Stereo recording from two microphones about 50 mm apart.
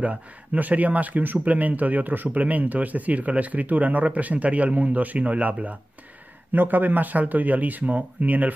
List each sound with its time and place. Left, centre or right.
0.0 s speech: right